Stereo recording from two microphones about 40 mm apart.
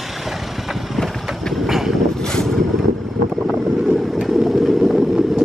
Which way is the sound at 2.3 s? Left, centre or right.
Centre.